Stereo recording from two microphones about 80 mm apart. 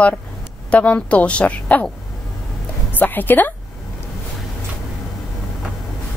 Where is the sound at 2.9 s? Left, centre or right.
Left.